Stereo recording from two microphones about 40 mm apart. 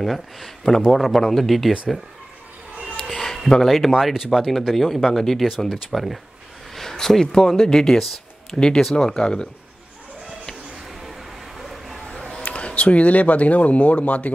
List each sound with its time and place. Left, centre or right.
0.0 s speech: centre
3.1 s a sound: centre
3.6 s speech: centre
4.0 s speech: centre; by 9.5 s left
10.9 s vehicle: centre
12.4 s speech: left